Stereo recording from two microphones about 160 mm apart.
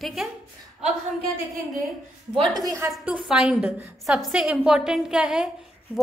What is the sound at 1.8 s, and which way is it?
Speech, centre (ahead or behind).